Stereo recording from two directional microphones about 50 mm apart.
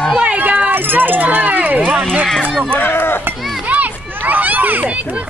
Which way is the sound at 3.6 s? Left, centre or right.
Right.